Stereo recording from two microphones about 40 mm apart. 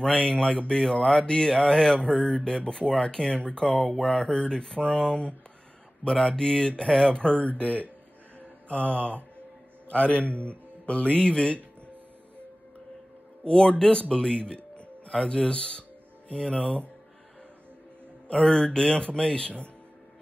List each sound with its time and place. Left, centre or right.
0.0 s speech: left
2.0 s speech: left
7.3 s speech: left
8.4 s mantra: left
9.8 s a man's voice: left
10.2 s speech: right
10.9 s speech: left
13.5 s speech: left
18.3 s speech: left